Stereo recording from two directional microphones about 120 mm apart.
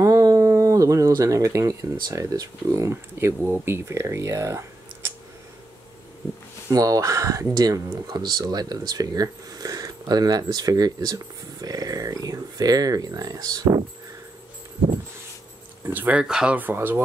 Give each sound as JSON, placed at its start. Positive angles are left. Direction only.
{"t": 0.0, "sound": "speech", "side_deg": -30}
{"t": 6.7, "sound": "speech", "side_deg": -30}
{"t": 15.9, "sound": "speech", "side_deg": -15}